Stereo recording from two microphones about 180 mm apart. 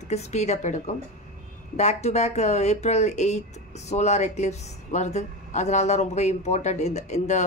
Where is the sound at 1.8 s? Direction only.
40° left (ahead or behind).